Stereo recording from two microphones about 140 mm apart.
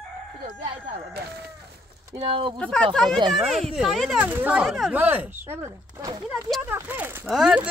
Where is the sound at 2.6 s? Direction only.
5° left (ahead or behind); by 6.2 s 25° right (ahead or behind).